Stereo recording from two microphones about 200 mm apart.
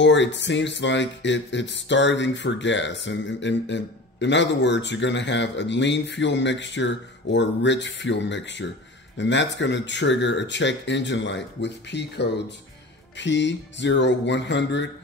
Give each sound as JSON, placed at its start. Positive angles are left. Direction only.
{"t": 0.0, "sound": "speech", "side_deg": 65}